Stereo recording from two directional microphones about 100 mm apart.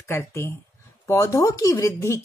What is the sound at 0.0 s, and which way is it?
Speech, 25° left (ahead or behind).